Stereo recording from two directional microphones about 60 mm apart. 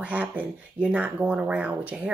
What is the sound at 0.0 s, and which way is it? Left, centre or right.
Speech, right.